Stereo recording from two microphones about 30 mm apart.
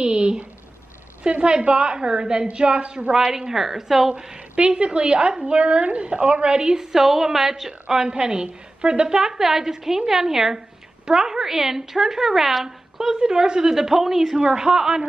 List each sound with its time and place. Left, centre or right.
0.0 s a sound: right
1.6 s a woman's voice: right
3.1 s a woman's voice: right
4.6 s a woman's voice: right
6.9 s a woman's voice: centre
8.1 s a woman's voice: right
9.4 s a woman's voice: centre
13.1 s a woman's voice: right
14.6 s a woman's voice: right